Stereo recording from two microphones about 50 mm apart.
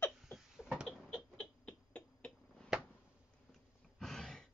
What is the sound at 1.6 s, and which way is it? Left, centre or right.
Finger snapping, left.